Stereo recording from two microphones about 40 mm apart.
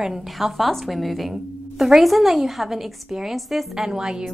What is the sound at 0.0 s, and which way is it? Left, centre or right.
A woman's voice, centre.